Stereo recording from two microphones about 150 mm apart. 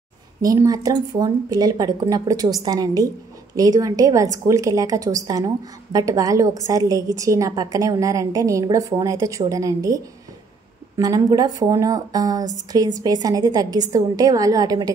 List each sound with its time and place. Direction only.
0.4 s a woman's voice: 25° right (ahead or behind)